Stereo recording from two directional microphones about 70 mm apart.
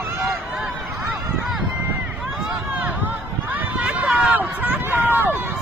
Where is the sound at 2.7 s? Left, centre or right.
Right.